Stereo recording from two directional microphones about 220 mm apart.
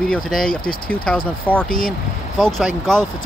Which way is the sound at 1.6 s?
40° left (ahead or behind).